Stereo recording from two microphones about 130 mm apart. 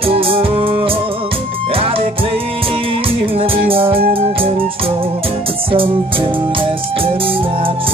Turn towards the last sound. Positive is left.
turn(degrees=-45)  # may be behind; listen again after turning